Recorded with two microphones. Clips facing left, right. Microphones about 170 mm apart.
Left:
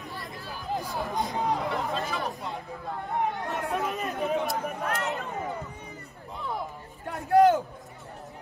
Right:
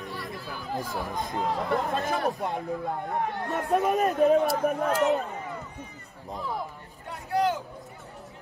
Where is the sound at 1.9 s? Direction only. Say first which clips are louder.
Right 3 dB; 55° right (ahead or behind).